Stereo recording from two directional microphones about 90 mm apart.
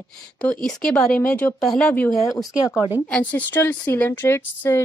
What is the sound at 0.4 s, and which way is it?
Speech, 10° left (ahead or behind).